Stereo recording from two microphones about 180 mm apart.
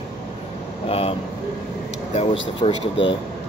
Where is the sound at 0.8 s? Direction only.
30° left (ahead or behind).